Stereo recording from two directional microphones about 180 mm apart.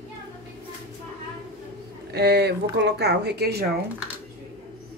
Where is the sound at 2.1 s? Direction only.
65° right (ahead or behind).